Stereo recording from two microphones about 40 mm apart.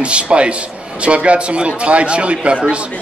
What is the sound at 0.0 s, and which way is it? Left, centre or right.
A man's voice, right.